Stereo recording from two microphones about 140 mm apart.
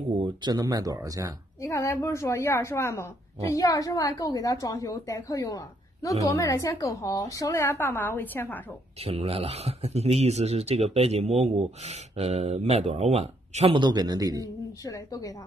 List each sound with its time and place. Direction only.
0.2 s speech: 30° right (ahead or behind)
1.6 s a woman's voice: 20° left (ahead or behind)
9.0 s speech: 45° right (ahead or behind); by 14.5 s 25° right (ahead or behind)
14.9 s a woman's voice: 25° left (ahead or behind)